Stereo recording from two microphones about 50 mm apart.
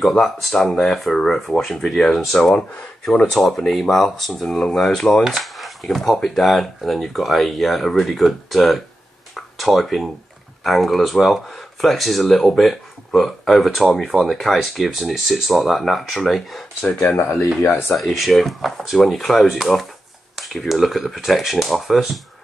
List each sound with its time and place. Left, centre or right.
0.0 s speech: centre
9.3 s a sound: centre
10.6 s speech: centre
17.1 s speech: left
17.6 s speech: left
17.9 s speech: centre